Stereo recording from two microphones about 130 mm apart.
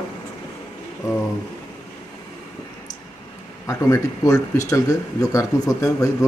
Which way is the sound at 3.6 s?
20° left (ahead or behind).